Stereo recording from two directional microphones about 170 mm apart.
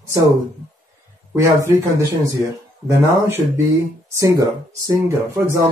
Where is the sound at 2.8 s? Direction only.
15° right (ahead or behind).